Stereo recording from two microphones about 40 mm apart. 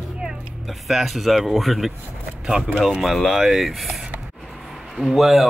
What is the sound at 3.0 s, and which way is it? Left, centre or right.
Speech, centre.